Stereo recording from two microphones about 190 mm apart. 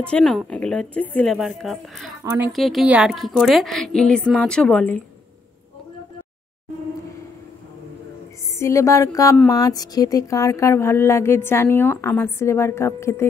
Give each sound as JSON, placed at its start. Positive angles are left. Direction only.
{"t": 0.0, "sound": "a woman's voice", "side_deg": 5}
{"t": 2.2, "sound": "a woman's voice", "side_deg": -10}
{"t": 2.5, "sound": "a woman's voice", "side_deg": 0}
{"t": 8.5, "sound": "speech", "side_deg": 15}